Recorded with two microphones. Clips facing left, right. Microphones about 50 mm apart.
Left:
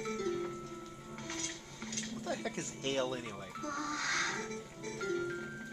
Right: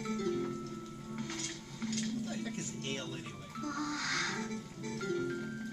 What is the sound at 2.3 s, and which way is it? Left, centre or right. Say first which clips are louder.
Music: left 2 dB; left.